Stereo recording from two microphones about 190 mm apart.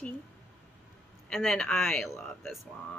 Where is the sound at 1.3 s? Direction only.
5° left (ahead or behind).